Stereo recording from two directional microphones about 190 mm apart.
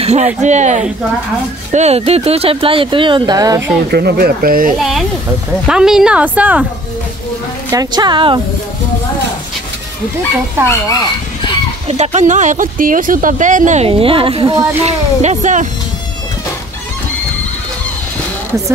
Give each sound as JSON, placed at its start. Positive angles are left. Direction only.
{"t": 0.0, "sound": "speech", "side_deg": -35}
{"t": 3.9, "sound": "speech", "side_deg": -55}
{"t": 4.7, "sound": "a woman's voice", "side_deg": 0}
{"t": 7.7, "sound": "speech", "side_deg": -20}
{"t": 11.9, "sound": "speech", "side_deg": -35}